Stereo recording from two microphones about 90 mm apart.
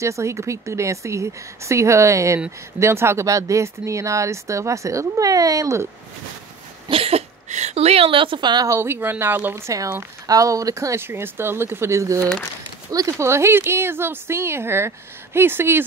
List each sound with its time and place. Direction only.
0.0 s speech: 35° right (ahead or behind)
6.9 s cough: 90° right
7.9 s a woman's voice: 85° right; by 8.6 s 55° right (ahead or behind)
8.6 s speech: 30° right (ahead or behind)